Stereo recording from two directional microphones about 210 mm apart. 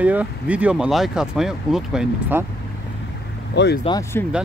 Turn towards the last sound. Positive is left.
turn(degrees=15)  # may be behind; listen again after turning